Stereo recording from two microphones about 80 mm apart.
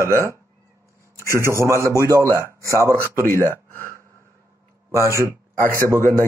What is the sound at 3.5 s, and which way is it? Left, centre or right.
Speech, left.